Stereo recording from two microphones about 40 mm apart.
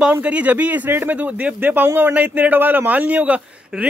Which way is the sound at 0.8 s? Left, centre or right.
Right.